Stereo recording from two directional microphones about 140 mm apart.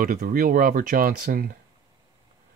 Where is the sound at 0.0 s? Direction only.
90° right.